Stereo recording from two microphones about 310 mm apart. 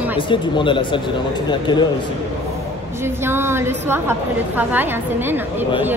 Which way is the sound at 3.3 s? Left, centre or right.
Centre.